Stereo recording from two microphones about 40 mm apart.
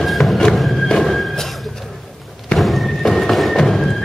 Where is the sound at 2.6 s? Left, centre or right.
Centre.